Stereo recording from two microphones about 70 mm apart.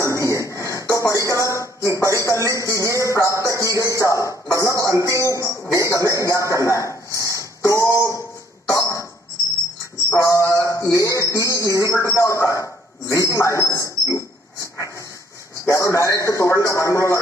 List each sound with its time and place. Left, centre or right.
0.0 s music: left
1.9 s speech: left
7.2 s a sound: left
8.6 s cough: left
10.0 s a man's voice: left